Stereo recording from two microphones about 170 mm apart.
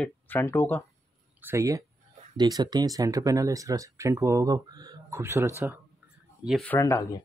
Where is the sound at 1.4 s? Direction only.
15° right (ahead or behind).